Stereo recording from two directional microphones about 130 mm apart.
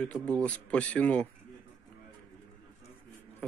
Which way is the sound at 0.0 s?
10° left (ahead or behind).